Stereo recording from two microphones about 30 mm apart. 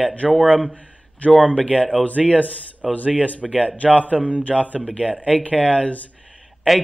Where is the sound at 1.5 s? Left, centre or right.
Left.